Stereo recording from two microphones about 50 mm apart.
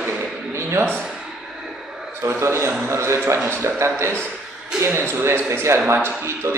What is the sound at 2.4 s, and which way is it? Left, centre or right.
Speech, right.